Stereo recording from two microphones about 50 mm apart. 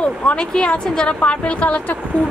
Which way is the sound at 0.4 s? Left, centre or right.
Centre.